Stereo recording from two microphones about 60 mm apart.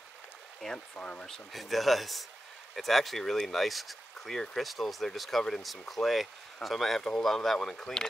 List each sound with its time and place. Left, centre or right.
0.6 s speech: centre
0.9 s speech: left
1.2 s speech: centre